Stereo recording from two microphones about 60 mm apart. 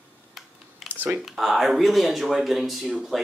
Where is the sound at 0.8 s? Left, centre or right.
Right.